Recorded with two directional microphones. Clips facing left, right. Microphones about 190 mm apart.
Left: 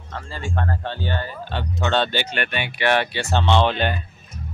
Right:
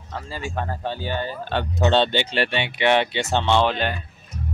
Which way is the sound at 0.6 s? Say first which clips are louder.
Left 1 dB; 10° right (ahead or behind).